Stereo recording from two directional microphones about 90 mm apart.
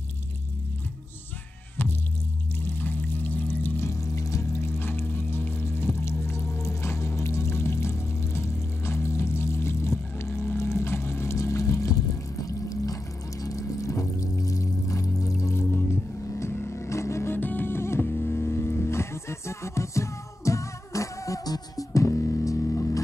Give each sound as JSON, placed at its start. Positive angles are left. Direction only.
{"t": 1.8, "sound": "music", "side_deg": 25}
{"t": 10.3, "sound": "a sound", "side_deg": 30}
{"t": 12.6, "sound": "music", "side_deg": 40}